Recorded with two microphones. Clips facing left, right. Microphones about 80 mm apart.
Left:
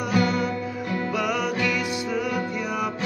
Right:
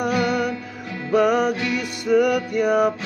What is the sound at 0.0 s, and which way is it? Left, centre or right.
Music, right.